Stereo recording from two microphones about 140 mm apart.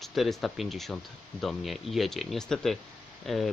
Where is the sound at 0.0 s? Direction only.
Centre (ahead or behind).